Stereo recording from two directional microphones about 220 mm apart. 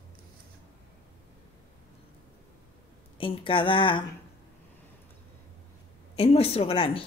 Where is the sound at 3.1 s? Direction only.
25° left (ahead or behind).